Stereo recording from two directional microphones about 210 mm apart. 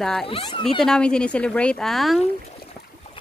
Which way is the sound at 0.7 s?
Centre (ahead or behind).